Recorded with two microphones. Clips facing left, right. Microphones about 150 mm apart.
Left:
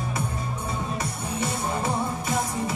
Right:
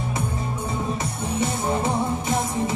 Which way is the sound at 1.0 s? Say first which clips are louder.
Right 4 dB; 20° right (ahead or behind).